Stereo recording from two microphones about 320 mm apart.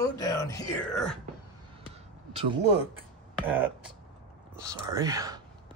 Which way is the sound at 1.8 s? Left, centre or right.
Centre.